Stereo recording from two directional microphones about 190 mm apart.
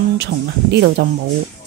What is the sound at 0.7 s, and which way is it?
Speech, 60° right (ahead or behind).